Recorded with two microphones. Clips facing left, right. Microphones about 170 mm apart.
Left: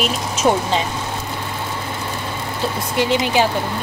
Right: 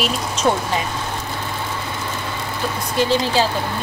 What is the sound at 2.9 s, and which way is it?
Speech, 15° left (ahead or behind).